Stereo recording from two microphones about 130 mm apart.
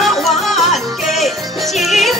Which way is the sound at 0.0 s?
Centre (ahead or behind).